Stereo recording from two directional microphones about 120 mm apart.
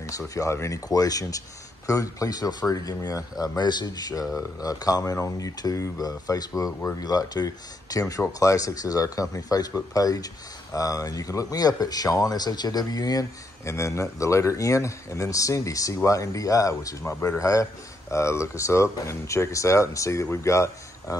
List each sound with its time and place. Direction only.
0.0 s speech: 25° left (ahead or behind)